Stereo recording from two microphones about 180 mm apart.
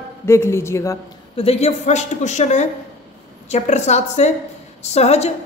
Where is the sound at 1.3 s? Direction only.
35° left (ahead or behind).